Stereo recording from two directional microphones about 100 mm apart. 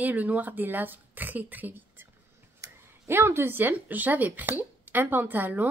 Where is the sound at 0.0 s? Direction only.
15° right (ahead or behind).